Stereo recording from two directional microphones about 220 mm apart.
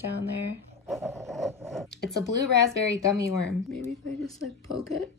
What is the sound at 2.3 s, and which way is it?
Speech, 50° right (ahead or behind).